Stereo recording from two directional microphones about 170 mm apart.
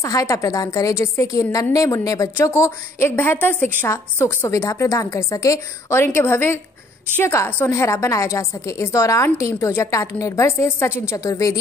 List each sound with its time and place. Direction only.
0.0 s a woman's voice: 20° left (ahead or behind)